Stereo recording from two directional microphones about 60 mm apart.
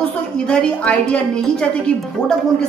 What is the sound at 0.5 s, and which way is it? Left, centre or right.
A woman's voice, centre.